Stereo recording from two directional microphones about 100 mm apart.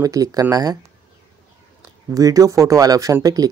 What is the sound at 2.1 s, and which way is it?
Speech, 35° right (ahead or behind).